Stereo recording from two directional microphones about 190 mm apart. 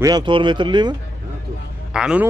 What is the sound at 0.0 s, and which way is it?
Speech, 25° right (ahead or behind).